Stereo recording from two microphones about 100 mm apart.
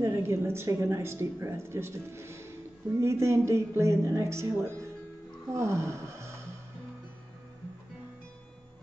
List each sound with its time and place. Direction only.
0.0 s speech: 30° right (ahead or behind)